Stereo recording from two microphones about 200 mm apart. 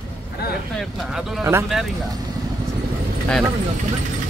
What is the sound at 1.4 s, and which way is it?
Speech, 15° right (ahead or behind).